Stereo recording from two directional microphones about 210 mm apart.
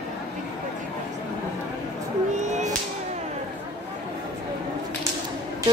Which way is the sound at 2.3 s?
35° right (ahead or behind).